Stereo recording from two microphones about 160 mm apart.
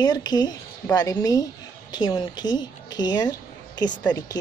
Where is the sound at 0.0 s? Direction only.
25° left (ahead or behind).